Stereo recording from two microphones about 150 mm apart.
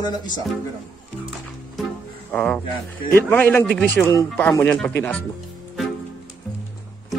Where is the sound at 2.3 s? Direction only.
10° left (ahead or behind).